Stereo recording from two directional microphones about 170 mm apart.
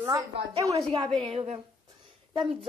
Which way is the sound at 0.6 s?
20° right (ahead or behind).